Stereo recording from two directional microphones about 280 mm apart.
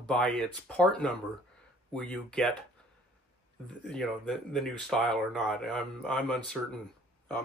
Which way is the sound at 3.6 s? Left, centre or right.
Centre.